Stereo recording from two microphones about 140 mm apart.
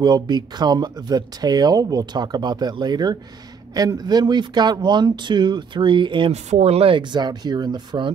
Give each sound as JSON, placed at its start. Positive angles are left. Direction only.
{"t": 0.0, "sound": "speech", "side_deg": -30}
{"t": 6.3, "sound": "speech", "side_deg": -50}